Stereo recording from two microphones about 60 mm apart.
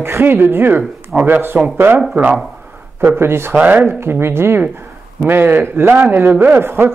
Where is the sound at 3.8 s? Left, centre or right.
Right.